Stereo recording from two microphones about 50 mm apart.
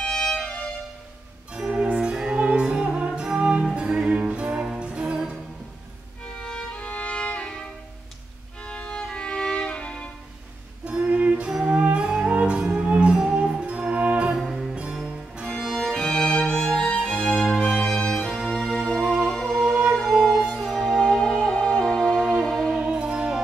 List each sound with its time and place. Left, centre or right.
0.0 s music: centre
1.5 s music: centre
6.4 s music: centre
6.9 s violin: left
8.6 s music: left
10.9 s music: right
14.3 s music: centre
15.5 s violin: centre
16.8 s music: centre
17.2 s music: centre
18.3 s music: centre
21.1 s music: centre
22.8 s music: centre